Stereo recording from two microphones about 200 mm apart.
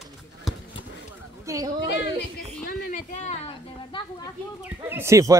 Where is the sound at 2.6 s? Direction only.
45° left (ahead or behind); by 4.3 s 25° left (ahead or behind).